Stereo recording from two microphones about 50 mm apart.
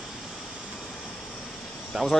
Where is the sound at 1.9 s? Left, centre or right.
Centre.